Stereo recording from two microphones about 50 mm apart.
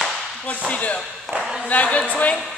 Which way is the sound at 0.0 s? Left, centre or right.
Centre.